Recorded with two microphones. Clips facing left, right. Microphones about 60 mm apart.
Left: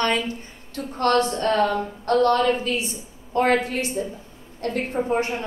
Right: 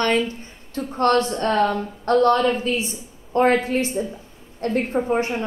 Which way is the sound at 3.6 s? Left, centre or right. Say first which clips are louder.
Right 3 dB; right.